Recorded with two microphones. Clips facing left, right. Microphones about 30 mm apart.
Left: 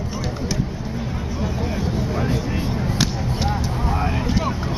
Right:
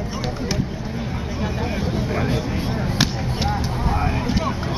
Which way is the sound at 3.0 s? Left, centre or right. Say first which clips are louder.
Right 1 dB; centre.